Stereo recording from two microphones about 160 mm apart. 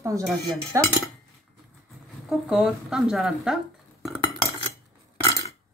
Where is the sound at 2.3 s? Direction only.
5° right (ahead or behind).